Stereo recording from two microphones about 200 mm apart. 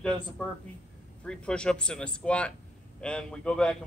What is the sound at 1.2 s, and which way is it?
A man's voice, 5° left (ahead or behind).